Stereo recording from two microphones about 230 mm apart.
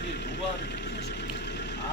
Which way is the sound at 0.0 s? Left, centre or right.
Left.